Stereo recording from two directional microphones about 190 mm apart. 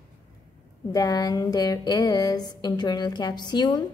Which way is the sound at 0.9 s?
20° left (ahead or behind).